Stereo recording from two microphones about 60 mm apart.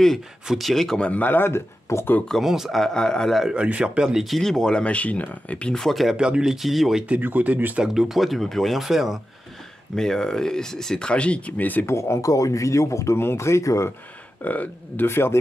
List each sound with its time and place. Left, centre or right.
0.5 s speech: centre
1.0 s speech: left
1.9 s speech: left
2.4 s speech: centre
3.4 s speech: right; by 5.7 s left
5.7 s speech: centre
6.1 s speech: centre
7.1 s speech: right
7.8 s speech: centre
9.9 s speech: centre; by 11.8 s left
11.8 s speech: left
14.4 s speech: left
15.0 s a man's voice: left